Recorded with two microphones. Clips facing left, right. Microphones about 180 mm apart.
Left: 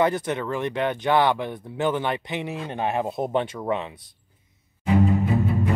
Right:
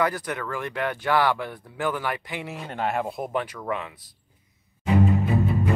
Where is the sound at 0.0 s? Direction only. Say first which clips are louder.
Left 4 dB; 25° left (ahead or behind).